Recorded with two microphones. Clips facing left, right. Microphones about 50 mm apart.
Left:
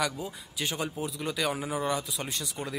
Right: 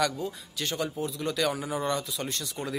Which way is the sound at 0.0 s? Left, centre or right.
Centre.